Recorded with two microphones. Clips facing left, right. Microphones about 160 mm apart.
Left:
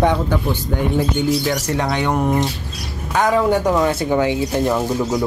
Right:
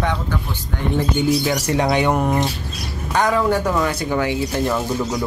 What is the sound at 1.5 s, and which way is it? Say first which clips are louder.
Speech: right 1 dB; 10° right (ahead or behind).